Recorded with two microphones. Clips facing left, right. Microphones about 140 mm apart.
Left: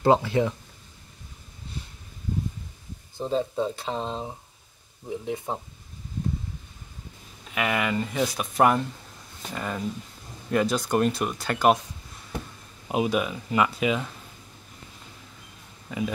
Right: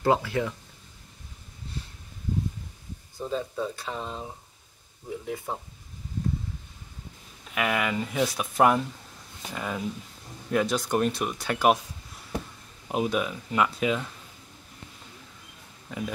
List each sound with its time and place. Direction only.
0.0 s speech: 25° left (ahead or behind)
3.2 s speech: 30° left (ahead or behind)
7.4 s speech: centre (ahead or behind)
12.8 s speech: 5° left (ahead or behind)
15.9 s speech: centre (ahead or behind)